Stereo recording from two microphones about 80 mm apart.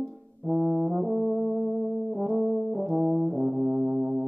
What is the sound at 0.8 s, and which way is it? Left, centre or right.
Brass instrument, centre.